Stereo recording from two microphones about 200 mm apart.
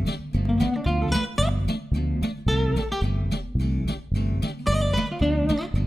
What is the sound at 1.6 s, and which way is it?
Music, 55° left (ahead or behind).